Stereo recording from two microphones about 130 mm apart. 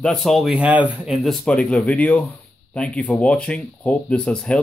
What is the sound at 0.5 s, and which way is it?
Speech, 10° right (ahead or behind).